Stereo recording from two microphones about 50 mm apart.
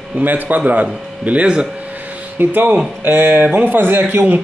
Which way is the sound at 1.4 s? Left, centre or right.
Centre.